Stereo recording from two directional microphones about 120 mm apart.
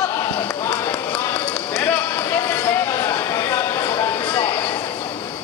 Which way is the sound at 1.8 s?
15° left (ahead or behind).